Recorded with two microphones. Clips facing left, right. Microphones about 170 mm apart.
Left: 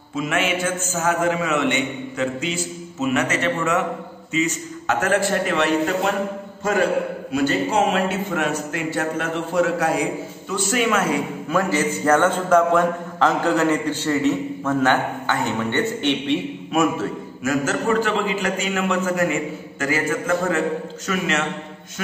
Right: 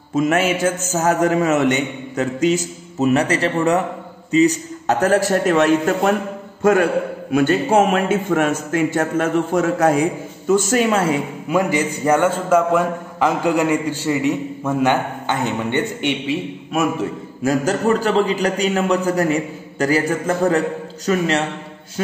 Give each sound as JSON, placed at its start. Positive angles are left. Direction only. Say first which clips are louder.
{"t": 0.1, "sound": "a man's voice", "louder": "right 5 dB", "side_deg": -40}
{"t": 11.4, "sound": "a man's voice", "louder": "right 3 dB", "side_deg": -15}
{"t": 16.3, "sound": "a man's voice", "louder": "left 1 dB", "side_deg": 0}
{"t": 17.4, "sound": "a man's voice", "louder": "right 4 dB", "side_deg": -35}